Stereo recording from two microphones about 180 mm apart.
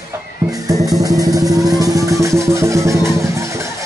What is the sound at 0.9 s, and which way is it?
Vehicle, 20° right (ahead or behind).